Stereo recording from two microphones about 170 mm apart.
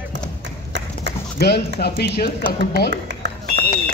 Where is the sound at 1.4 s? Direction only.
70° left (ahead or behind).